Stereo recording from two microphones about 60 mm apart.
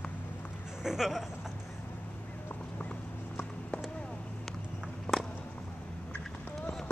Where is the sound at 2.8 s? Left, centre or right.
Centre.